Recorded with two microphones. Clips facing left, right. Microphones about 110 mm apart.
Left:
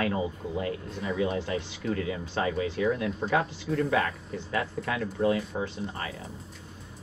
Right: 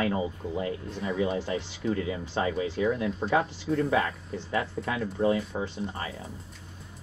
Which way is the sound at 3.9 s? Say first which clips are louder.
Even; 25° right (ahead or behind).